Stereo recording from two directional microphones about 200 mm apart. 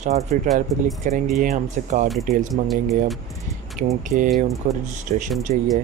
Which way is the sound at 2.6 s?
Centre (ahead or behind).